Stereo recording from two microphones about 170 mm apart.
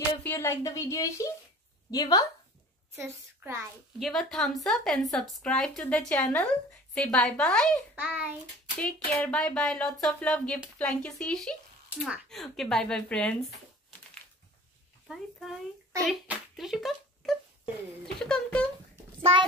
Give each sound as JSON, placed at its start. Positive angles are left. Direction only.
{"t": 0.2, "sound": "speech", "side_deg": 15}
{"t": 3.0, "sound": "a woman's voice", "side_deg": -15}
{"t": 4.0, "sound": "a woman's voice", "side_deg": 0}
{"t": 7.9, "sound": "a woman's voice", "side_deg": -10}
{"t": 8.7, "sound": "a woman's voice", "side_deg": 5}
{"t": 15.1, "sound": "a child's voice", "side_deg": -5}